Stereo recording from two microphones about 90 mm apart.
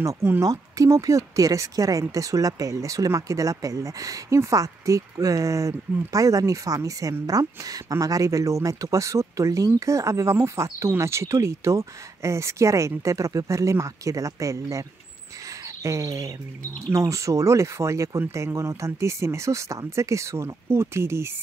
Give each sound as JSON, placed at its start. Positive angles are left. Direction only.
{"t": 0.0, "sound": "speech", "side_deg": -35}